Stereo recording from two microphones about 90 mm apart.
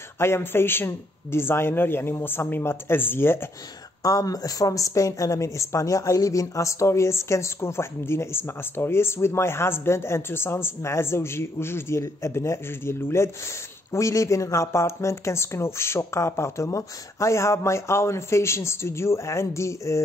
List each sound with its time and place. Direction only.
0.2 s a man's voice: 25° left (ahead or behind)
4.0 s a woman's voice: 40° left (ahead or behind)